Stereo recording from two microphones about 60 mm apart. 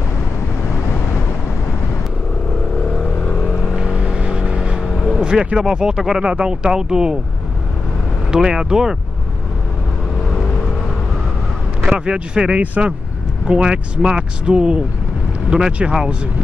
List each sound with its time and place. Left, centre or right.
3.0 s vehicle: centre
3.7 s vehicle: centre
5.1 s speech: centre
8.3 s speech: centre
11.9 s speech: centre